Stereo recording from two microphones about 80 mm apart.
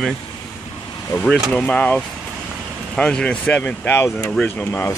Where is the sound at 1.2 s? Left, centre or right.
Centre.